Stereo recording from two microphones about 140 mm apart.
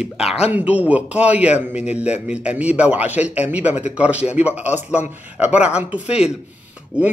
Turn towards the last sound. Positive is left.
turn(degrees=-10)  # may be behind; listen again after turning